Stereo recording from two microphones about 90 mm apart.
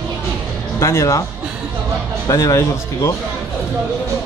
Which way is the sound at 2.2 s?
35° left (ahead or behind).